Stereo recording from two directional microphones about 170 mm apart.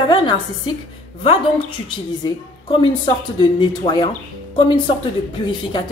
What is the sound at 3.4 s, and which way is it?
Speech, 25° left (ahead or behind).